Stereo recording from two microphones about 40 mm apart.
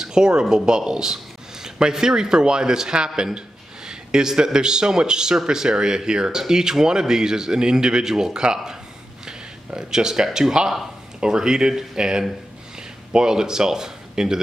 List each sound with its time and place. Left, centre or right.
0.0 s speech: centre
9.8 s speech: centre